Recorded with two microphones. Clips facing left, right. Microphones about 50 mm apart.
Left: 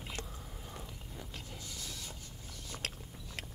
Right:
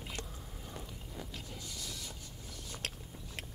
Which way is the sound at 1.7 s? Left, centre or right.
Left.